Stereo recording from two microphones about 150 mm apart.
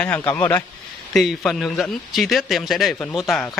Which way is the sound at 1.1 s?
Centre (ahead or behind).